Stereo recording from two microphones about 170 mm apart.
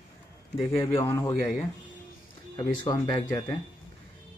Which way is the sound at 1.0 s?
15° left (ahead or behind).